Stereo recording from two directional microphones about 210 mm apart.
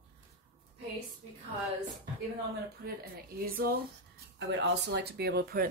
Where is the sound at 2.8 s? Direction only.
45° right (ahead or behind).